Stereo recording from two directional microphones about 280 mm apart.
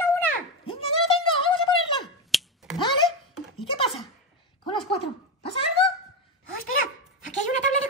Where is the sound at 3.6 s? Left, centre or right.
Centre.